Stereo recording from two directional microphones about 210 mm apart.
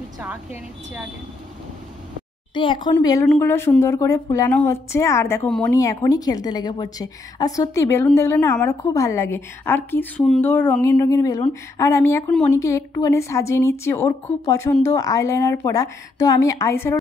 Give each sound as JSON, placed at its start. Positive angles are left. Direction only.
{"t": 2.5, "sound": "a woman's voice", "side_deg": 25}
{"t": 3.3, "sound": "a woman's voice", "side_deg": 10}